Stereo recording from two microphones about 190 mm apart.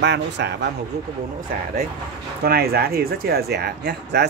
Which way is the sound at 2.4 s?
55° right (ahead or behind).